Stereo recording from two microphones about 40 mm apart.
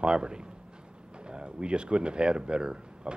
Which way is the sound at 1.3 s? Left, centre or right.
Right.